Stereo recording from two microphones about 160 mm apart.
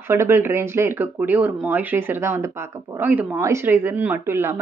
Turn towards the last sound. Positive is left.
turn(degrees=-15)  # may be behind; listen again after turning